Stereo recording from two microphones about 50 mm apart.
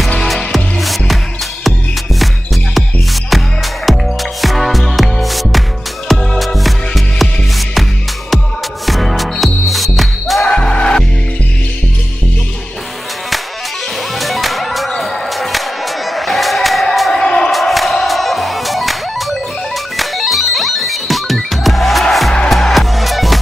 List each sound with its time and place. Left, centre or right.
0.2 s music: centre
2.1 s music: centre
8.8 s music: centre
10.4 s music: centre
14.1 s music: centre
16.9 s a sound: centre
17.2 s a sound: centre
17.5 s music: centre